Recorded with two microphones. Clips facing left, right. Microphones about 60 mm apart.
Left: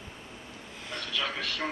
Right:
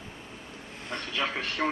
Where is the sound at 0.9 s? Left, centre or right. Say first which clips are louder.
Right 2 dB; right.